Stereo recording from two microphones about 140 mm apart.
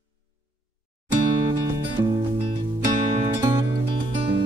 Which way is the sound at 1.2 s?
35° right (ahead or behind).